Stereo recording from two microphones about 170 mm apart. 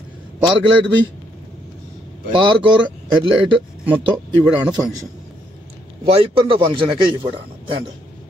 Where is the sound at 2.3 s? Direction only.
30° right (ahead or behind).